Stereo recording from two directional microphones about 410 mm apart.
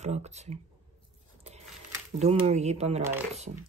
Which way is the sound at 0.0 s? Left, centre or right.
Centre.